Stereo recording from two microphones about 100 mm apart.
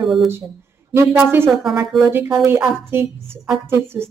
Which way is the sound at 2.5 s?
25° right (ahead or behind).